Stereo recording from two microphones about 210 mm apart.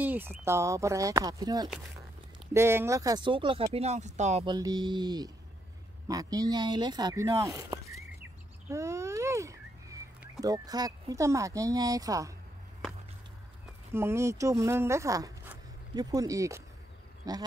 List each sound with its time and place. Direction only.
0.0 s speech: 10° right (ahead or behind); by 4.6 s 30° right (ahead or behind)
4.6 s speech: 20° right (ahead or behind)
6.0 s a sound: 15° right (ahead or behind)
10.4 s speech: 20° right (ahead or behind)
13.9 s speech: 10° right (ahead or behind)